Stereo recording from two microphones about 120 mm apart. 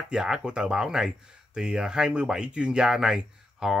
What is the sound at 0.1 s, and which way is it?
Speech, 5° right (ahead or behind).